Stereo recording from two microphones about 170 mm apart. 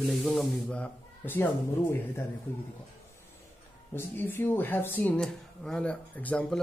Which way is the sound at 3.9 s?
10° left (ahead or behind).